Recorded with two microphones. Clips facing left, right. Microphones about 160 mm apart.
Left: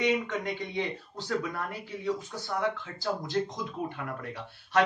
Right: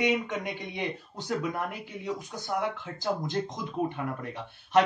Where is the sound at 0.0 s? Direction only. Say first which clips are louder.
Even; 15° right (ahead or behind).